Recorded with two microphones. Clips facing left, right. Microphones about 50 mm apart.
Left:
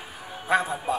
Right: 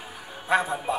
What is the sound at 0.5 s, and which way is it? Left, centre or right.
Speech, centre.